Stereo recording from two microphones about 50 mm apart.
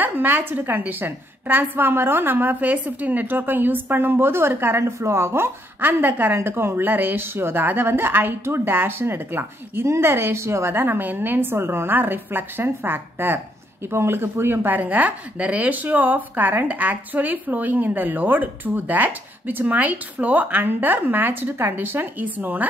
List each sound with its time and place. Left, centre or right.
0.0 s a woman's voice: right
6.3 s a woman's voice: right
6.9 s a woman's voice: right
9.8 s a woman's voice: right
10.7 s a woman's voice: right
11.5 s a woman's voice: right